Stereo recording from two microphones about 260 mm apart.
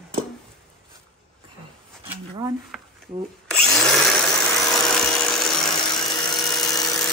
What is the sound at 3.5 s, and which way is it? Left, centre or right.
Drill, centre.